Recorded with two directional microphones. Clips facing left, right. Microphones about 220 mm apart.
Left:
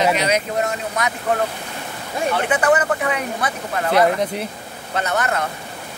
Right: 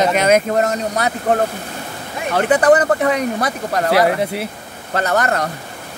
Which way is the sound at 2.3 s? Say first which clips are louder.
Right 6 dB; 40° right (ahead or behind).